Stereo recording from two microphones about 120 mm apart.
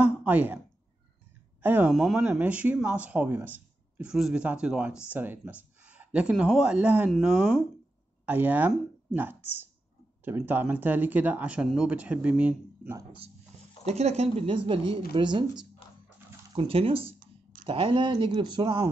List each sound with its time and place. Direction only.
0.0 s a sound: 15° right (ahead or behind)
1.6 s speech: 15° right (ahead or behind)
1.9 s speech: centre (ahead or behind)
2.2 s speech: 15° right (ahead or behind)
8.3 s speech: 15° right (ahead or behind)
13.8 s speech: 65° right (ahead or behind); by 15.4 s 45° right (ahead or behind)
16.5 s speech: 50° right (ahead or behind)